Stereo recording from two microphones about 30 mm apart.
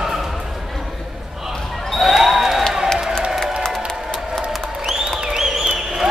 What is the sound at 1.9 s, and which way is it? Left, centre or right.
Basketball bounce, centre.